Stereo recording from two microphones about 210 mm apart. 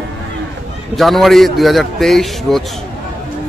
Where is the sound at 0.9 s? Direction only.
Centre (ahead or behind).